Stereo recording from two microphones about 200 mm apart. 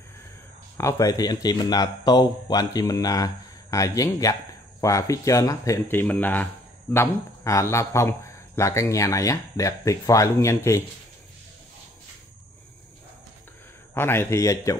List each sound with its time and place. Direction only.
0.7 s speech: 15° left (ahead or behind)
13.9 s speech: 10° left (ahead or behind)